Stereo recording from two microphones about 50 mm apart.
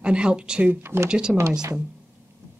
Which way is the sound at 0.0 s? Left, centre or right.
Centre.